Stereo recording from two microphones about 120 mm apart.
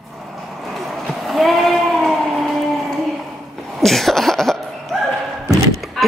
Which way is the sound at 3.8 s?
Centre (ahead or behind).